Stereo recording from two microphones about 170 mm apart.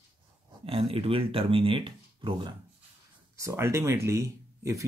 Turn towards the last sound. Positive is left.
turn(degrees=-20)  # may be behind; listen again after turning